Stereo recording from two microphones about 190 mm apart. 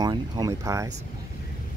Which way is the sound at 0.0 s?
20° right (ahead or behind).